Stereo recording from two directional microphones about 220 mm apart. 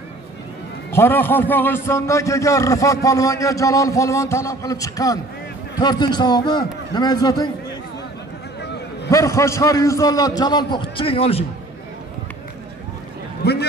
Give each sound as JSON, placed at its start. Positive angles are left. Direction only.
{"t": 0.9, "sound": "a man's voice", "side_deg": 10}
{"t": 9.1, "sound": "a man's voice", "side_deg": 15}
{"t": 13.4, "sound": "a sound", "side_deg": 45}